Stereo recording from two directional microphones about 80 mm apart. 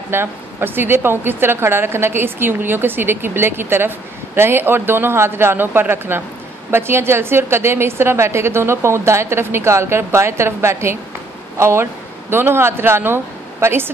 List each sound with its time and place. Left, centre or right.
0.1 s a woman's voice: right